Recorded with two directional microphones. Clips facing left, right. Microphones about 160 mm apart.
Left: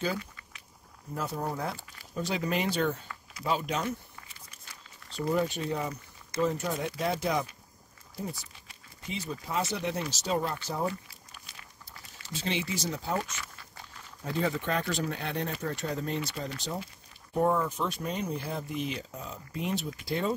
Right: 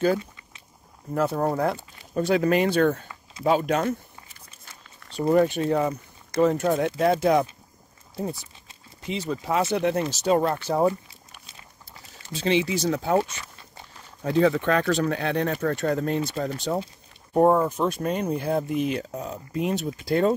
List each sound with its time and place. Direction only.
1.1 s speech: 65° right (ahead or behind)
5.1 s speech: 60° right (ahead or behind)
9.0 s speech: 85° right; by 11.0 s 60° right (ahead or behind)
12.4 s speech: 90° right; by 13.2 s 65° right (ahead or behind)
13.2 s dog: 25° right (ahead or behind)
14.2 s speech: 90° right; by 20.3 s 50° right (ahead or behind)